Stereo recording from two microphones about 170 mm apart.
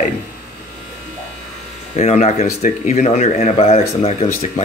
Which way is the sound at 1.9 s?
40° left (ahead or behind).